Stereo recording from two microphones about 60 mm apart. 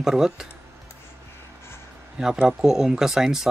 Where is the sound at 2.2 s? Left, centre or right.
Centre.